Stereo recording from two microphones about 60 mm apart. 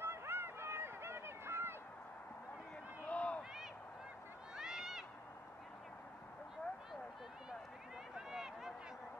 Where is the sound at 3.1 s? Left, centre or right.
Left.